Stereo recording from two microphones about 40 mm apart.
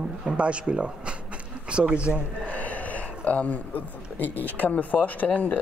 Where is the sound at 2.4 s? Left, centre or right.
Left.